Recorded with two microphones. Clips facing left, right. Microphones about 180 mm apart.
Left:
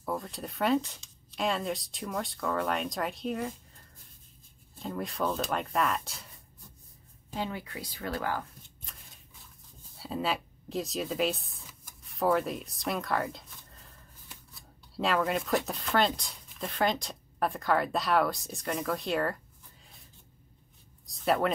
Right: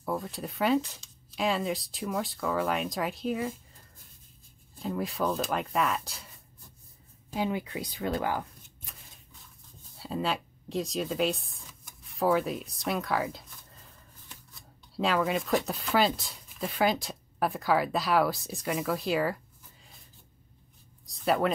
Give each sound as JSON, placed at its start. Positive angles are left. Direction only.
{"t": 0.0, "sound": "speech", "side_deg": 0}
{"t": 4.8, "sound": "speech", "side_deg": 0}
{"t": 7.3, "sound": "speech", "side_deg": -15}
{"t": 9.9, "sound": "speech", "side_deg": 0}
{"t": 21.1, "sound": "speech", "side_deg": 0}